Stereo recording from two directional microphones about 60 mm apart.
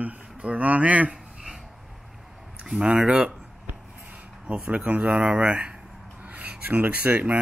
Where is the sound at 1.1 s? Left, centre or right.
Centre.